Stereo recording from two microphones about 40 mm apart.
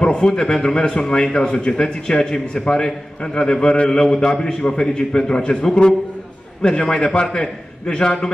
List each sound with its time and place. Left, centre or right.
0.0 s a man's voice: centre